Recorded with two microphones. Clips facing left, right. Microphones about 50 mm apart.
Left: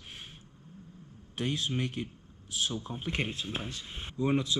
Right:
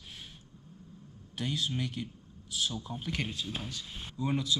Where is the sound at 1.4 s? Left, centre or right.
Left.